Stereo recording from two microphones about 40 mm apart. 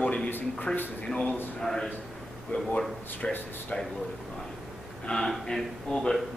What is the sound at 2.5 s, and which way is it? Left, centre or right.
Speech, left.